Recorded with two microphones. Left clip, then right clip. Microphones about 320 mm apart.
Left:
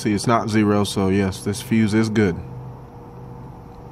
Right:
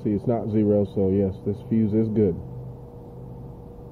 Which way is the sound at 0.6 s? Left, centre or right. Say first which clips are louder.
Left 3 dB; left.